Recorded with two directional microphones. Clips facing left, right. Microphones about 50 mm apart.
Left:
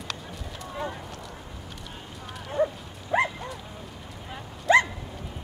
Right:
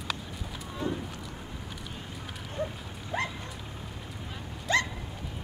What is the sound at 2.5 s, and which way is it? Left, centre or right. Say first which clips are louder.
Dog: left 9 dB; left.